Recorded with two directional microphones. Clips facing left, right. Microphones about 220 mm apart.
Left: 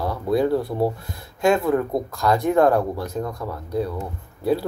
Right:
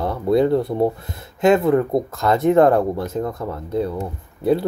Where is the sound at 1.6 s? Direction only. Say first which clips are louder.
Right 4 dB; 20° right (ahead or behind).